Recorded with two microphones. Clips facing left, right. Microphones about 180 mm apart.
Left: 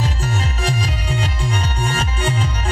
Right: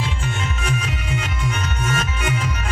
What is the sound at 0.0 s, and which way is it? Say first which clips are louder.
Music: left 3 dB; 35° left (ahead or behind).